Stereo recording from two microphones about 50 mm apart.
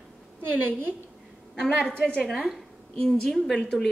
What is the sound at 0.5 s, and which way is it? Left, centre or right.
Speech, right.